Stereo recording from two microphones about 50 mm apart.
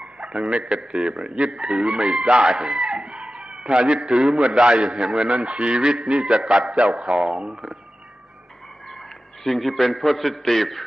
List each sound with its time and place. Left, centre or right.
0.0 s a sound: centre
0.4 s speech: right
1.0 s speech: centre
1.9 s speech: centre
8.8 s a man's voice: centre